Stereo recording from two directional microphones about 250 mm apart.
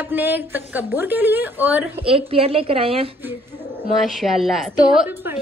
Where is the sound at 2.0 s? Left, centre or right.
Right.